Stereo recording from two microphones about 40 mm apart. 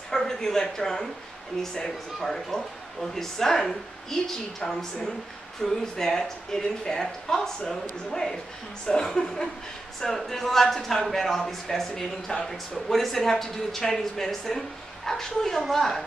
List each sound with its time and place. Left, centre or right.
0.1 s speech: centre
5.6 s speech: centre